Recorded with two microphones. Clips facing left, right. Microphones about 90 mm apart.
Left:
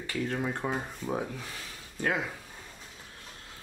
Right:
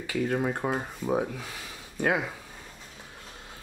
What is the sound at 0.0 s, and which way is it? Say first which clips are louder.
Speech: right 4 dB; 10° right (ahead or behind).